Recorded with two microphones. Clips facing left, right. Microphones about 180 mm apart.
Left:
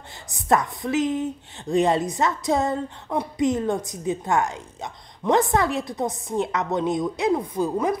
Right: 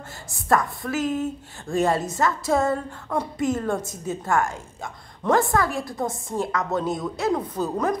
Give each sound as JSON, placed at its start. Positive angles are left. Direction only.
{"t": 0.3, "sound": "a woman's voice", "side_deg": 20}